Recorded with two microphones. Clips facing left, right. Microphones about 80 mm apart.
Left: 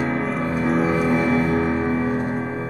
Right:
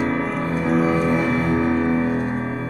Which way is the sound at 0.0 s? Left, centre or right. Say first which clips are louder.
Right 1 dB; centre.